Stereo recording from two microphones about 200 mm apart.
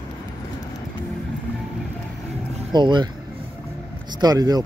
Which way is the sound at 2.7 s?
20° right (ahead or behind).